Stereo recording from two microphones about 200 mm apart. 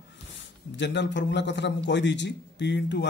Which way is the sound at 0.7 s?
60° left (ahead or behind).